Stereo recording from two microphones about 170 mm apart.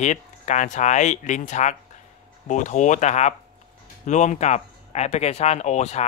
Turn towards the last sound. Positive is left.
turn(degrees=40)  # may be behind; listen again after turning